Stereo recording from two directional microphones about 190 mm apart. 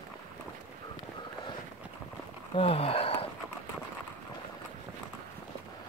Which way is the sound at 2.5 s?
30° left (ahead or behind).